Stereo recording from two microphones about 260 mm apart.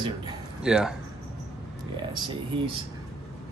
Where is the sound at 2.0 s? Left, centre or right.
Centre.